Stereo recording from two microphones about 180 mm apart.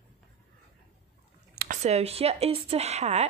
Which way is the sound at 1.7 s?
35° right (ahead or behind).